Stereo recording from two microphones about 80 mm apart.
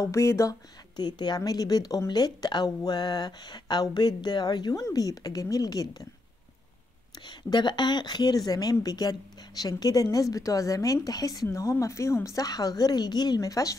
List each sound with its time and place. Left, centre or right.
0.0 s speech: left
0.9 s a woman's voice: left
4.7 s a woman's voice: left
7.2 s a woman's voice: left
11.5 s a woman's voice: left